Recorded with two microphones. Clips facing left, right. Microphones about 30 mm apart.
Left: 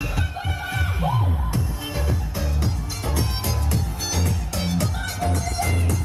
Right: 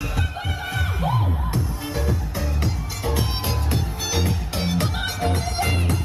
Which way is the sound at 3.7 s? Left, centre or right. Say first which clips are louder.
Right 2 dB; right.